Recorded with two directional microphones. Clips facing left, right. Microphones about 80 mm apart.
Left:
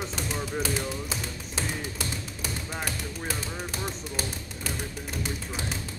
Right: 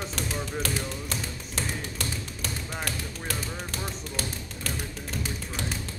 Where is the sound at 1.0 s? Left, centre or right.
Centre.